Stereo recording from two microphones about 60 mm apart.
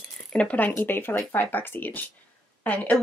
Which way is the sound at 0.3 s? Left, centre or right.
Centre.